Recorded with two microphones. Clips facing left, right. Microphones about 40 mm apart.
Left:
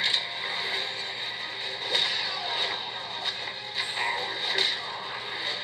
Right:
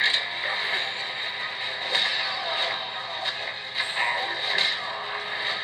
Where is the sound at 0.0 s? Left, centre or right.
Centre.